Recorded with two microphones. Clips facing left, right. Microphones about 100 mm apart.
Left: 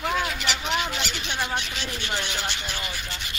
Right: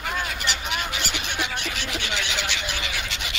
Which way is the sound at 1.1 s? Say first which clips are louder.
Left 1 dB; 60° right (ahead or behind).